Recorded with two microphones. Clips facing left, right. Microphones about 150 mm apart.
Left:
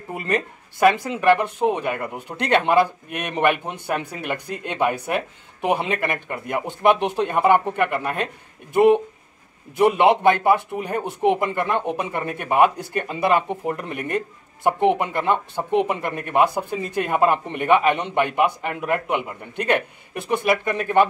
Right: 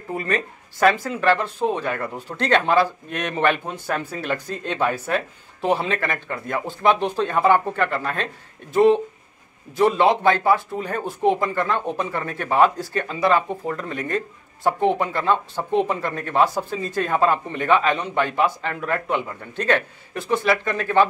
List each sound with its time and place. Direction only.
0.1 s speech: 20° left (ahead or behind)